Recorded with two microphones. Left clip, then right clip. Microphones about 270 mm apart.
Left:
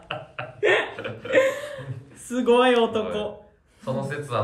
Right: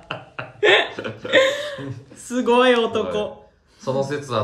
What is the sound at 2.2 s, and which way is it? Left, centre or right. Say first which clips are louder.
A woman's voice: right 3 dB; centre.